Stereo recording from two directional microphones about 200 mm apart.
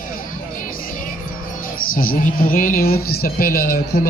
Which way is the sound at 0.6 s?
45° left (ahead or behind).